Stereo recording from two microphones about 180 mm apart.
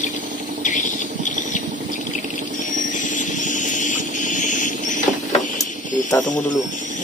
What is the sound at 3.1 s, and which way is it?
Vehicle, 45° left (ahead or behind).